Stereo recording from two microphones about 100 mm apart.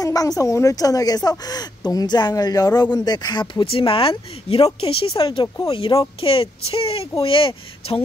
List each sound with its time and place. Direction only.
0.0 s a sound: 35° left (ahead or behind)
0.4 s speech: 30° left (ahead or behind)
3.7 s speech: 65° left (ahead or behind)